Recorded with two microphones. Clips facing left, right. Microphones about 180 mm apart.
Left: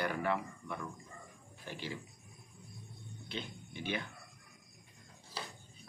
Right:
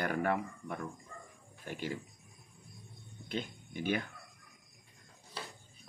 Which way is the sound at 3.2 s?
45° right (ahead or behind).